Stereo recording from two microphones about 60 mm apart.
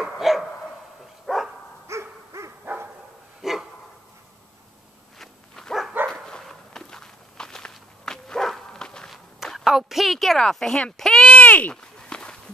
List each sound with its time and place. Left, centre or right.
0.0 s dog: centre
1.9 s hoot: right
2.6 s dog: right
3.4 s dog: centre
5.2 s dog: centre
9.1 s a sound: centre
10.5 s speech: centre
11.0 s a sound: centre
11.2 s a sound: left
11.7 s walk: centre